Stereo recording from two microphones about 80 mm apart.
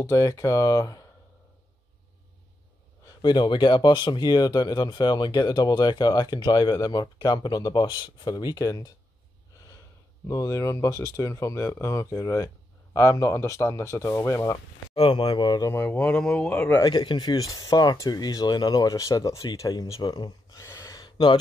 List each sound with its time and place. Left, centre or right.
0.0 s speech: left
3.2 s speech: left
10.2 s speech: left
15.0 s speech: left
15.7 s speech: left
16.2 s speech: centre
16.4 s speech: left
16.8 s speech: left
17.4 s speech: left
20.0 s speech: left
20.5 s a sound: left
21.0 s a sound: left